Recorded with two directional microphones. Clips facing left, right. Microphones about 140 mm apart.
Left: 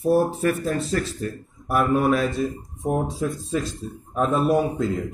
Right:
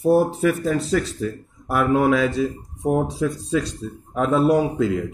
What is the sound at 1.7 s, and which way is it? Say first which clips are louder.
A man's voice: right 2 dB; 90° right.